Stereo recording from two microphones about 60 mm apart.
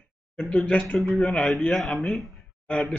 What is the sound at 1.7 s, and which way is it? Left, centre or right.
Speech, centre.